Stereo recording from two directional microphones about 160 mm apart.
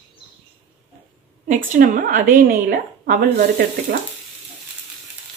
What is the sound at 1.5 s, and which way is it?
A woman's voice, 55° right (ahead or behind).